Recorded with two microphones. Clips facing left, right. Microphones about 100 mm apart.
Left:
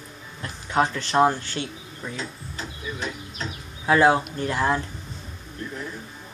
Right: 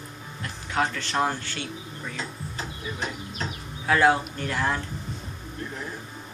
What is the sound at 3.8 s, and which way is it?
Speech, 20° left (ahead or behind).